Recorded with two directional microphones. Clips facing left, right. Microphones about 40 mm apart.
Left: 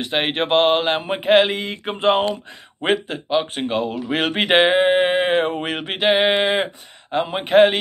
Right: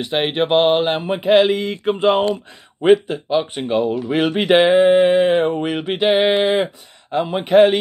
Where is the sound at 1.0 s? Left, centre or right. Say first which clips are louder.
Right 2 dB; left.